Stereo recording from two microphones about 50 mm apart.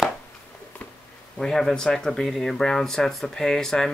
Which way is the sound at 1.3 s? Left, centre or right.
Centre.